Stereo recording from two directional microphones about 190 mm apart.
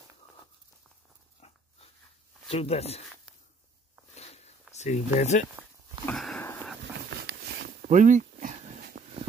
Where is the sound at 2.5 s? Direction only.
30° left (ahead or behind).